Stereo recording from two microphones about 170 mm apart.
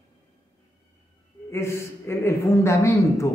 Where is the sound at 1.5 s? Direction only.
15° left (ahead or behind).